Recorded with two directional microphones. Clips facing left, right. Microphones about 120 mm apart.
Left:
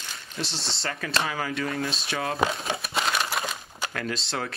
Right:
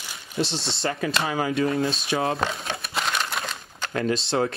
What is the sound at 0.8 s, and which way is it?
Speech, 20° right (ahead or behind).